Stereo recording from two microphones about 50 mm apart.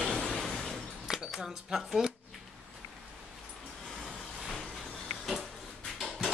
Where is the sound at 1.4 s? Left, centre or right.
Centre.